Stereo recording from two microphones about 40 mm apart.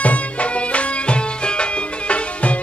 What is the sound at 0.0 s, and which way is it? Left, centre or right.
Music, left.